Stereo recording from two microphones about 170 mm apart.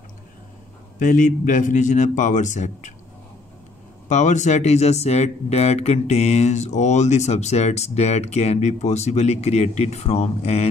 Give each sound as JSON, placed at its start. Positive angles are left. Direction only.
{"t": 0.9, "sound": "a man's voice", "side_deg": 50}
{"t": 4.1, "sound": "speech", "side_deg": 45}